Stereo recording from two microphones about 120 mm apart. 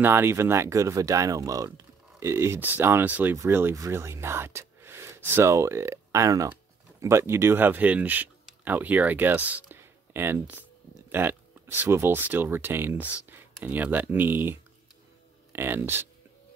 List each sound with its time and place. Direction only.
0.0 s speech: 20° right (ahead or behind)